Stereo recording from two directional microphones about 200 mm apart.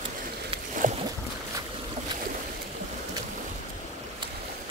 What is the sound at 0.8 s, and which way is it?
Boat, 40° right (ahead or behind).